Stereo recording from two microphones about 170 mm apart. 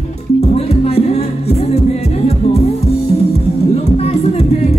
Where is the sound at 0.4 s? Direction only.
35° left (ahead or behind).